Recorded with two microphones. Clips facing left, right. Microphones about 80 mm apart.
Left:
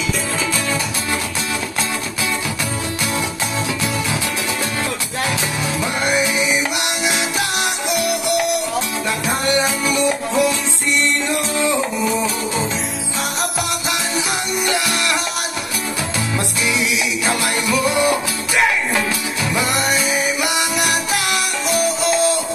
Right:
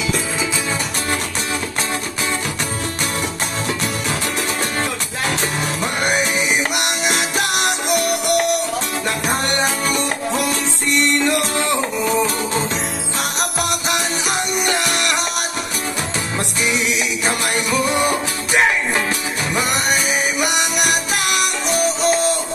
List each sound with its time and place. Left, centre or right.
5.8 s music: right
17.3 s music: right
20.9 s music: left